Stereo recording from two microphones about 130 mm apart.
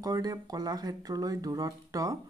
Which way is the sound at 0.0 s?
30° right (ahead or behind).